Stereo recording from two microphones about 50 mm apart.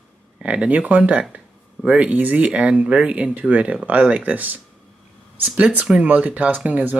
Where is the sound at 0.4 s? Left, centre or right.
Right.